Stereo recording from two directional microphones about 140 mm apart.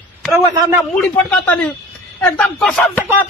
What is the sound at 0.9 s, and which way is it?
Speech, 10° left (ahead or behind).